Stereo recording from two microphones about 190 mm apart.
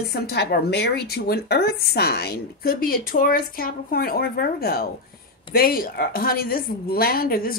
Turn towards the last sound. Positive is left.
turn(degrees=50)  # may be behind; listen again after turning